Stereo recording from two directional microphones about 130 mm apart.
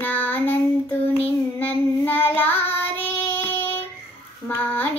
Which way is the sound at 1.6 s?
15° left (ahead or behind).